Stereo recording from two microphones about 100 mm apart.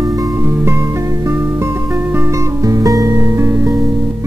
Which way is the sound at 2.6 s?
35° right (ahead or behind).